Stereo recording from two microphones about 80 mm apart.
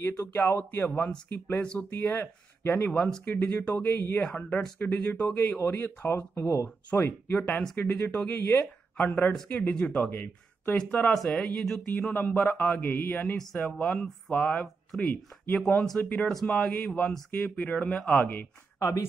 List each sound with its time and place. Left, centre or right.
0.0 s speech: left
2.9 s speech: centre
5.6 s speech: left
7.3 s speech: centre
12.0 s speech: centre
13.4 s speech: centre
18.2 s speech: left